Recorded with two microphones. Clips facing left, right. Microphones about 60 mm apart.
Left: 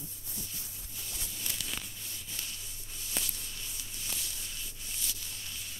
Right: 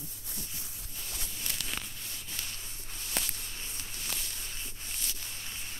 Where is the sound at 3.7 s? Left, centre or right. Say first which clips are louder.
Right 4 dB; right.